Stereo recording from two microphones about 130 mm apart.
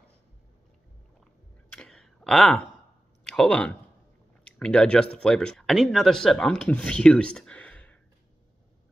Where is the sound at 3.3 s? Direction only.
5° left (ahead or behind).